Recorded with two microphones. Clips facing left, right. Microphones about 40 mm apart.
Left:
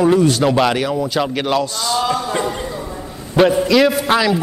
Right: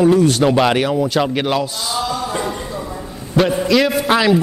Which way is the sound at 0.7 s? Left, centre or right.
Centre.